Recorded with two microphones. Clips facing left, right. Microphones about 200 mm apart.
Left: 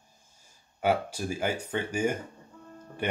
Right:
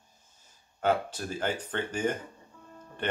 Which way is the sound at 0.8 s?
10° left (ahead or behind).